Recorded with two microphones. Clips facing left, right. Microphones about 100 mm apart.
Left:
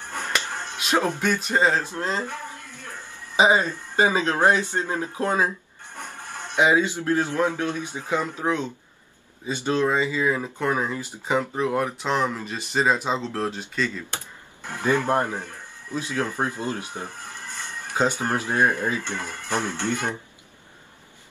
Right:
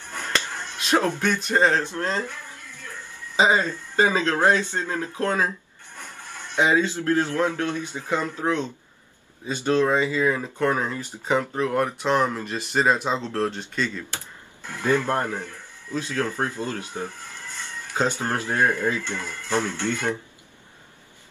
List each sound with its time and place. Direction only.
0.2 s a sound: 15° left (ahead or behind)
1.2 s speech: 10° left (ahead or behind)
3.3 s speech: 15° left (ahead or behind)
6.5 s speech: 15° left (ahead or behind)